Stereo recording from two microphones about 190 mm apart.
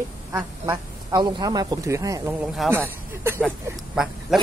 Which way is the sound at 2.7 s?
10° right (ahead or behind).